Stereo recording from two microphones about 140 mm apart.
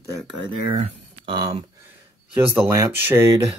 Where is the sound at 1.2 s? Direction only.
35° right (ahead or behind).